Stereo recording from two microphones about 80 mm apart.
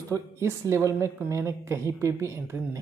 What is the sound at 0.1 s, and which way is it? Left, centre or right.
Speech, right.